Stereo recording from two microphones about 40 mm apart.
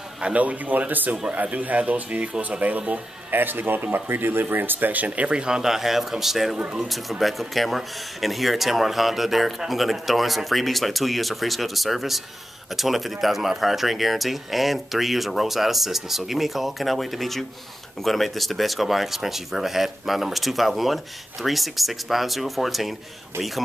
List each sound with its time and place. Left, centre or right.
0.2 s speech: right
3.3 s speech: right
5.3 s speech: centre